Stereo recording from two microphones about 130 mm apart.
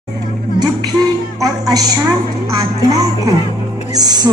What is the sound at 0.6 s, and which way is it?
Music, 30° right (ahead or behind).